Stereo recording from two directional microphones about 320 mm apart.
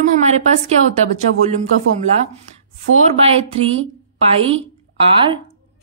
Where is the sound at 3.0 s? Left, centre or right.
Centre.